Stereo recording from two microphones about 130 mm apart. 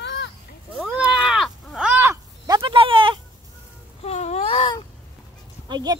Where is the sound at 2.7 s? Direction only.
40° right (ahead or behind).